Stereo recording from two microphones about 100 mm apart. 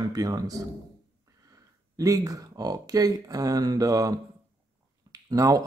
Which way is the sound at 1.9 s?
35° right (ahead or behind).